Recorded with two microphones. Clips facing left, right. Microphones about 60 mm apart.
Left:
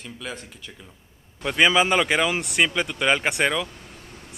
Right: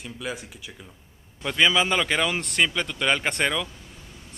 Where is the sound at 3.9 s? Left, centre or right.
Left.